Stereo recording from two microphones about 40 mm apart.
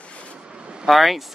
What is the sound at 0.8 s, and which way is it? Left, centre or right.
Speech, centre.